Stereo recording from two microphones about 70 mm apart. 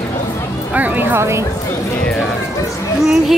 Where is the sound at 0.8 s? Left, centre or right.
Right.